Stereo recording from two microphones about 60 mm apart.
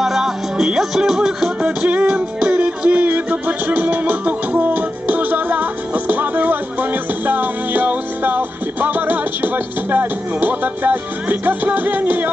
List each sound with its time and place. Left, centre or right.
0.0 s music: centre
1.6 s music: right